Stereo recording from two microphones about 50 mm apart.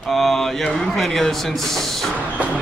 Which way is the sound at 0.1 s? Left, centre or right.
Centre.